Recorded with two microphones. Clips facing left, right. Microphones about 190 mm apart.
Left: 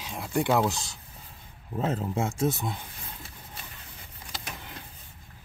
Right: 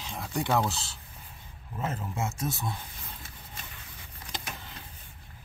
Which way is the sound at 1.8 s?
30° left (ahead or behind).